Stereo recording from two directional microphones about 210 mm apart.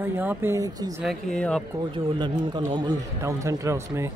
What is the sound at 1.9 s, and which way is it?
A man's voice, 20° right (ahead or behind).